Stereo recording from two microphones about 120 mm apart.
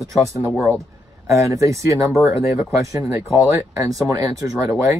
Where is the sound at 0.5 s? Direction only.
5° right (ahead or behind).